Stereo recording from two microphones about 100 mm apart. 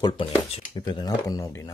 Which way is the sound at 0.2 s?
60° left (ahead or behind).